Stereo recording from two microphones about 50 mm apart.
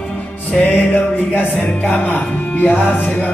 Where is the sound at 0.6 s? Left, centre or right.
Left.